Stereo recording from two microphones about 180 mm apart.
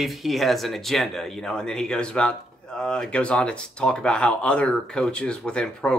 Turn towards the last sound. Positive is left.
turn(degrees=5)  # may be behind; listen again after turning